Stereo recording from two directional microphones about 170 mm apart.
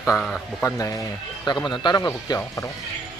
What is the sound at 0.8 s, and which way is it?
Speech, 20° left (ahead or behind).